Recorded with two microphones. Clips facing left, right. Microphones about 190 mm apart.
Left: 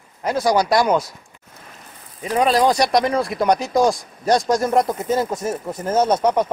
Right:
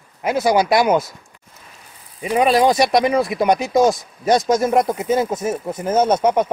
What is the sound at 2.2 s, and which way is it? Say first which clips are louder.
Speech: right 2 dB; 10° right (ahead or behind).